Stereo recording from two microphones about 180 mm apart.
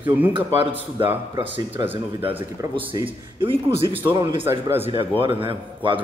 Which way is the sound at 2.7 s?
30° right (ahead or behind).